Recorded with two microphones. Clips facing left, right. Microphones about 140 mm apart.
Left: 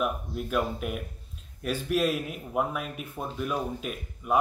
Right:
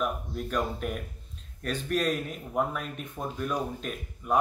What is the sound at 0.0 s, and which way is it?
Speech, 5° left (ahead or behind).